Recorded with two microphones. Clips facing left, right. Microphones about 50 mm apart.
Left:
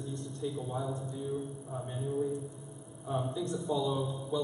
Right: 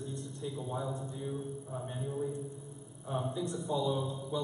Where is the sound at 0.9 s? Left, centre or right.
Centre.